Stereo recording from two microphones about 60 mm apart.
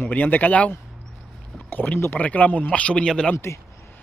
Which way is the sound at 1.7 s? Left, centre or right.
Left.